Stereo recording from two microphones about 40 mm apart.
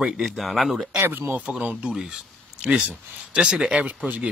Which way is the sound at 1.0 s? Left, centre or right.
Right.